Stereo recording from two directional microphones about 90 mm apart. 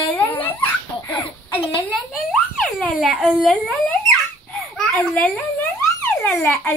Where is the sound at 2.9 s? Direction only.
Centre (ahead or behind).